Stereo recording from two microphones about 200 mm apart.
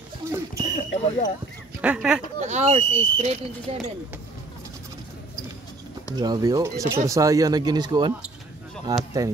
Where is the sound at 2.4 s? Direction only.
35° right (ahead or behind).